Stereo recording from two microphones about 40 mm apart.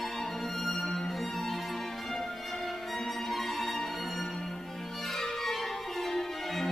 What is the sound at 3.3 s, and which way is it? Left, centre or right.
Music, centre.